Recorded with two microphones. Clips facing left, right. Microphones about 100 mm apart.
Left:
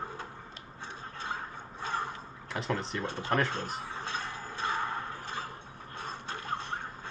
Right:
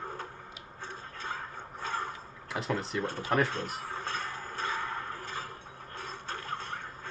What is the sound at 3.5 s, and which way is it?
Speech, 35° left (ahead or behind).